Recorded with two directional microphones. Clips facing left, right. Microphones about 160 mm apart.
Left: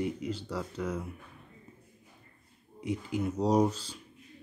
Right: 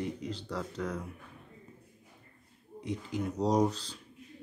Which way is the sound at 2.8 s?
5° left (ahead or behind).